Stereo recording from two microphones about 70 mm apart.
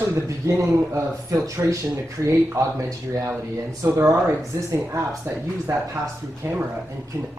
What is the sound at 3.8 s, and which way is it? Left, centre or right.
Speech, right.